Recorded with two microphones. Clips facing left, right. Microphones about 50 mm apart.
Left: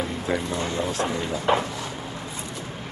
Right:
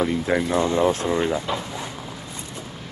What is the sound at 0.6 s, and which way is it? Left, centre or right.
Speech, right.